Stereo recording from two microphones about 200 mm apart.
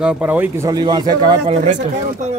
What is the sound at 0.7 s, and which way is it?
Speech, 20° right (ahead or behind).